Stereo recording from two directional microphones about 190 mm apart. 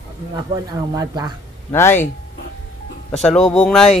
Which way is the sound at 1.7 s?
10° left (ahead or behind).